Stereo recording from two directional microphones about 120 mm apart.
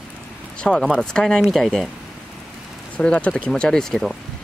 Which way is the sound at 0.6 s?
5° left (ahead or behind).